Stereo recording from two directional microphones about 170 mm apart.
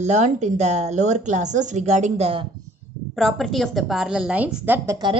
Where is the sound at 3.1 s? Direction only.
Centre (ahead or behind).